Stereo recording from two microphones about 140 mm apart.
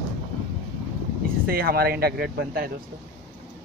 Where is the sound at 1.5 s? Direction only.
90° right.